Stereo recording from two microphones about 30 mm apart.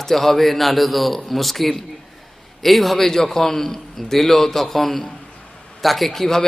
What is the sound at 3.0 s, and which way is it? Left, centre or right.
A man's voice, centre.